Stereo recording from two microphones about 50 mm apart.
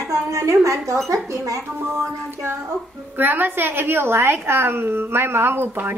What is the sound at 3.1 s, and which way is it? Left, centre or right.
A woman's voice, right.